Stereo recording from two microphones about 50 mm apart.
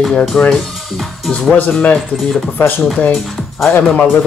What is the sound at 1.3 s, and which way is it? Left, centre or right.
Speech, centre.